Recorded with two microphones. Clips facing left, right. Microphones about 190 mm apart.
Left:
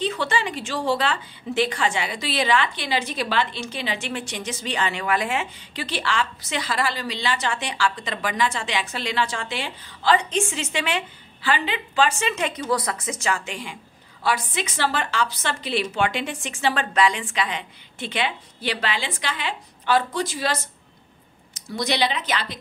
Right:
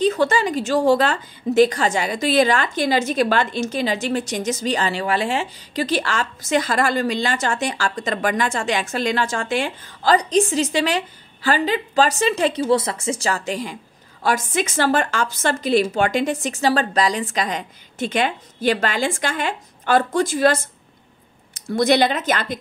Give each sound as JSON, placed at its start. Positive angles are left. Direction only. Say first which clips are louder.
{"t": 0.0, "sound": "a woman's voice", "louder": "right 7 dB", "side_deg": -40}